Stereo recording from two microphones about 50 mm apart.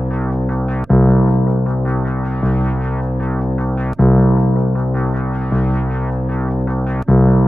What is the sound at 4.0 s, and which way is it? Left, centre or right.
Music, centre.